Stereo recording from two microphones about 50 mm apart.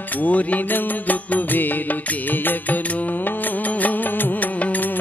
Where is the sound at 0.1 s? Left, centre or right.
Left.